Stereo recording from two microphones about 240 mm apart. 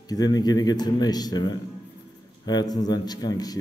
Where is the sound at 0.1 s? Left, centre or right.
Centre.